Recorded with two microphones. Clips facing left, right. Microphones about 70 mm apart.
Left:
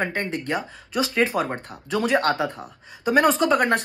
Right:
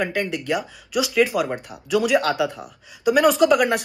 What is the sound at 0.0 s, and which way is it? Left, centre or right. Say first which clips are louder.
Speech: right 2 dB; left.